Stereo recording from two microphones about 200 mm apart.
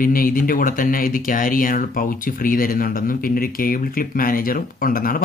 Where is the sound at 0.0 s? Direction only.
45° left (ahead or behind).